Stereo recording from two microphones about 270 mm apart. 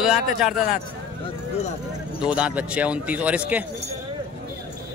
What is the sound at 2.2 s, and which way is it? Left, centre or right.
A man's voice, centre.